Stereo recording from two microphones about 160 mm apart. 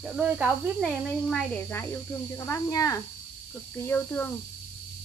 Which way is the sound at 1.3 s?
10° left (ahead or behind).